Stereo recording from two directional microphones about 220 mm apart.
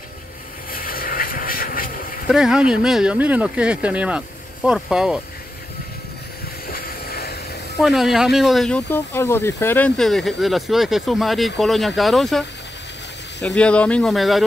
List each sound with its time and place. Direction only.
0.7 s vehicle: 40° left (ahead or behind)
2.2 s speech: centre (ahead or behind)
6.7 s vehicle: 45° left (ahead or behind)
7.8 s speech: centre (ahead or behind)
13.6 s speech: 5° left (ahead or behind)